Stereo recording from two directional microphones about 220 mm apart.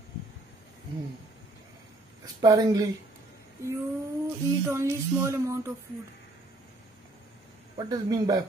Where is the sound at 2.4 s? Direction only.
15° right (ahead or behind).